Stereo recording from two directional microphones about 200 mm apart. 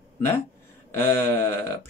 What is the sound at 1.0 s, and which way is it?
Speech, 10° left (ahead or behind).